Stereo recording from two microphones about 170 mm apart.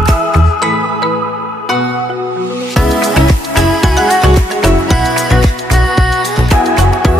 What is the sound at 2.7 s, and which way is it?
Music, centre (ahead or behind).